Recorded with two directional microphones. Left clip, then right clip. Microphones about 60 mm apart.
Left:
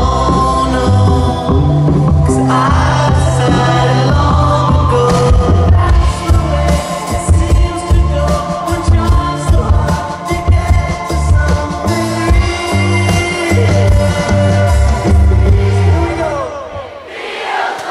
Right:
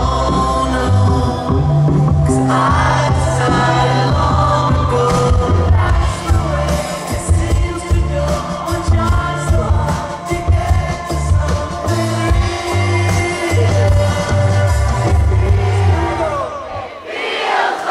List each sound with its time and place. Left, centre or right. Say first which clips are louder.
0.0 s music: left 4 dB; left
2.2 s music: left 2 dB; left
4.9 s music: left 3 dB; centre
11.9 s music: left 2 dB; left
13.5 s music: left 3 dB; left